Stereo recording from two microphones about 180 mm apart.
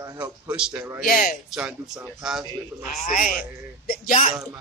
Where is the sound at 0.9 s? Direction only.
55° left (ahead or behind).